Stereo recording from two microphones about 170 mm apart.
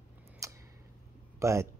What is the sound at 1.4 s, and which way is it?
Speech, 15° right (ahead or behind).